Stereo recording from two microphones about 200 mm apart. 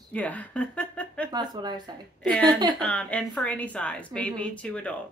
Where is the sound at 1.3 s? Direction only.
20° right (ahead or behind).